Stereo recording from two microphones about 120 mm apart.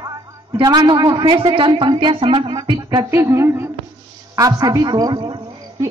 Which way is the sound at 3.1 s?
25° right (ahead or behind).